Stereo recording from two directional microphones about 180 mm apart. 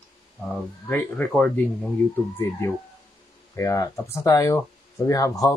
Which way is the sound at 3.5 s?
15° left (ahead or behind).